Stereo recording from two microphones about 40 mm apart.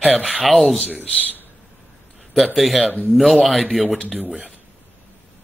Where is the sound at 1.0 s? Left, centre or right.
Left.